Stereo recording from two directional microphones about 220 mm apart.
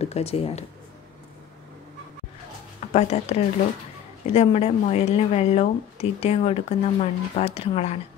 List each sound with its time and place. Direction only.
0.0 s speech: 30° left (ahead or behind)
2.9 s speech: 30° left (ahead or behind)